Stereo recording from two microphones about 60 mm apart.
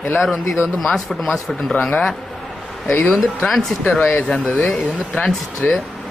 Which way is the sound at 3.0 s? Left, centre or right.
Centre.